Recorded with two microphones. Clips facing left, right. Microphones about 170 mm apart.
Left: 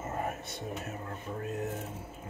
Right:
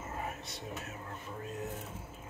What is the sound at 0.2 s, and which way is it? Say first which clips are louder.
Whispering: left 5 dB; 50° left (ahead or behind).